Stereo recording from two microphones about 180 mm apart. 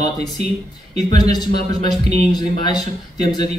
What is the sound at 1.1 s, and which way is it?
A man's voice, 25° left (ahead or behind).